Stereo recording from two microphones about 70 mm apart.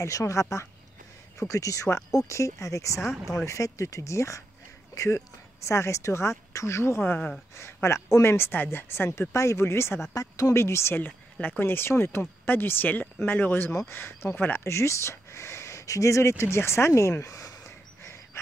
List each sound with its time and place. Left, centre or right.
0.0 s speech: left
10.1 s speech: left
10.5 s speech: left